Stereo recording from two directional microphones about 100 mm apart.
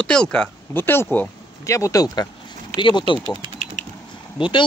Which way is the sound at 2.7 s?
50° left (ahead or behind).